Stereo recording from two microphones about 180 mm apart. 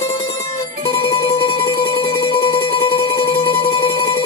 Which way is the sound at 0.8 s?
30° left (ahead or behind).